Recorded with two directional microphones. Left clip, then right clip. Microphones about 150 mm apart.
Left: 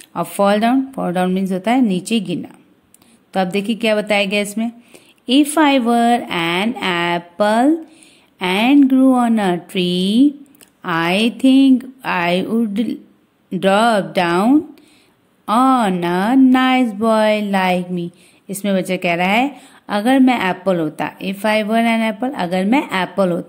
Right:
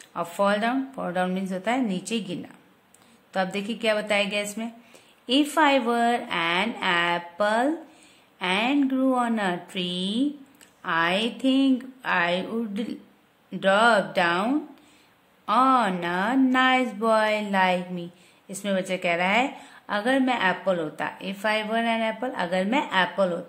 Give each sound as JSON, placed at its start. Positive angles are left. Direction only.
{"t": 0.1, "sound": "speech", "side_deg": 35}